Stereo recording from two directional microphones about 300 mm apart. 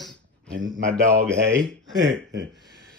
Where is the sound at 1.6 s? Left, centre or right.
Centre.